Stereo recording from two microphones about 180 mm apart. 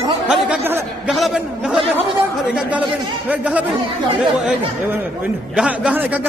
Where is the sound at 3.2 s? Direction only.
10° right (ahead or behind).